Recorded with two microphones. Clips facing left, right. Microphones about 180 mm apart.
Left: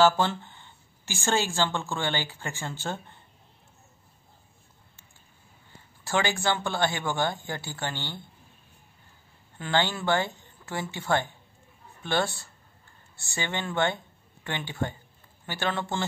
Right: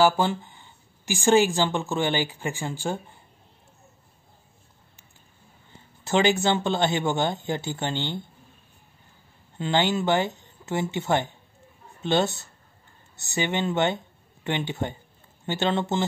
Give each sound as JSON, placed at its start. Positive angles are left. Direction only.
{"t": 0.0, "sound": "speech", "side_deg": -15}
{"t": 6.0, "sound": "speech", "side_deg": -20}
{"t": 9.6, "sound": "speech", "side_deg": -20}